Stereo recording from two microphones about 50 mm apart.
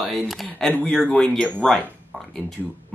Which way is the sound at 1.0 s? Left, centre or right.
Centre.